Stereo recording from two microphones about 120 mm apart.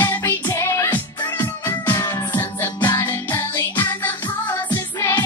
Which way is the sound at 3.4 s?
35° left (ahead or behind).